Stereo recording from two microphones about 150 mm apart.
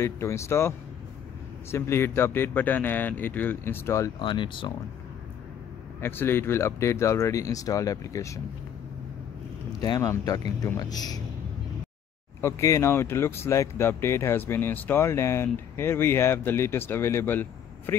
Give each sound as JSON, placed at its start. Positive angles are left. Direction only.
{"t": 0.0, "sound": "speech", "side_deg": 20}
{"t": 4.2, "sound": "speech", "side_deg": 35}
{"t": 5.9, "sound": "speech", "side_deg": 15}
{"t": 9.7, "sound": "speech", "side_deg": 25}
{"t": 12.4, "sound": "speech", "side_deg": 20}